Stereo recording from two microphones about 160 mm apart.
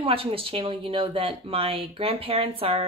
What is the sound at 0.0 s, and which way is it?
Speech, 35° right (ahead or behind).